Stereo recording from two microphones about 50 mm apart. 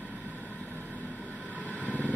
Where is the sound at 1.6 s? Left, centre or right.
Left.